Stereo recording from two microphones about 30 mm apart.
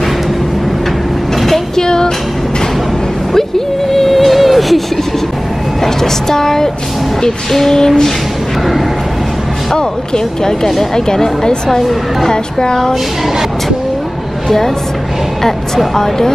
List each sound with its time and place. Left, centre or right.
1.8 s music: left
3.3 s a sound: centre
6.2 s speech: centre
9.8 s speech: left
12.3 s speech: left
15.9 s speech: centre